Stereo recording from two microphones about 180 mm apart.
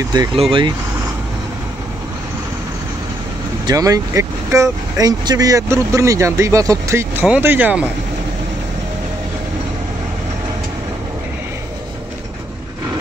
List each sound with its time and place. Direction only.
0.4 s speech: 30° right (ahead or behind)
3.6 s speech: 20° right (ahead or behind)